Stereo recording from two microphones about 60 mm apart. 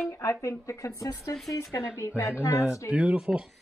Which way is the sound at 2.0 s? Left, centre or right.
Left.